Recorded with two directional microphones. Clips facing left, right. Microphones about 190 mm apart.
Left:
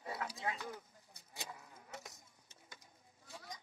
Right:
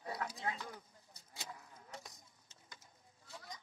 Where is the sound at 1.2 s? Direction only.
15° left (ahead or behind).